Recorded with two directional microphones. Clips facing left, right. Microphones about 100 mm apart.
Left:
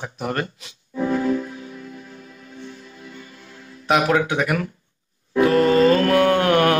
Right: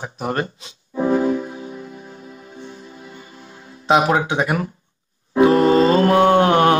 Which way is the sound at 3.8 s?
25° right (ahead or behind).